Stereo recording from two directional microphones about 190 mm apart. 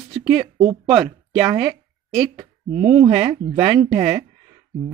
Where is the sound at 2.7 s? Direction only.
35° right (ahead or behind).